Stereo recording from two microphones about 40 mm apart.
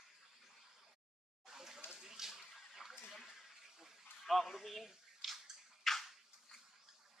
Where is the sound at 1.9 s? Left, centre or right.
Centre.